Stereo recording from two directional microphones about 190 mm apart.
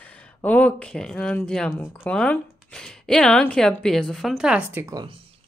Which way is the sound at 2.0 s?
5° left (ahead or behind).